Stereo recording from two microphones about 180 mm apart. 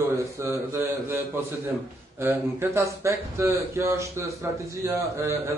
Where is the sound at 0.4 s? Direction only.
15° right (ahead or behind).